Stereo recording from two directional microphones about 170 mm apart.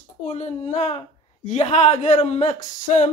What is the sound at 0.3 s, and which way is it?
Speech, 40° left (ahead or behind).